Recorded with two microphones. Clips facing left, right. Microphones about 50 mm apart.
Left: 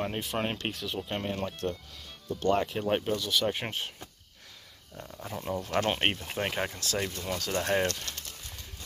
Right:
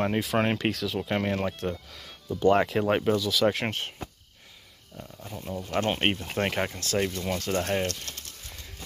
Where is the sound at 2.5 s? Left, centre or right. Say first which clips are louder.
Right 3 dB; right.